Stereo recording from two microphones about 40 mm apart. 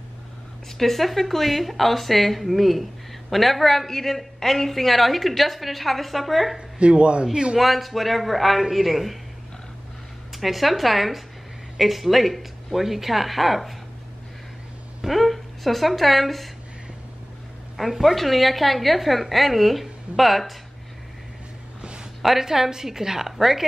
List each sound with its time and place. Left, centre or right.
0.7 s a woman's voice: centre
6.8 s a man's voice: right
7.5 s a woman's voice: centre
10.3 s a woman's voice: centre
15.0 s a woman's voice: centre
17.7 s a woman's voice: centre
22.2 s a woman's voice: centre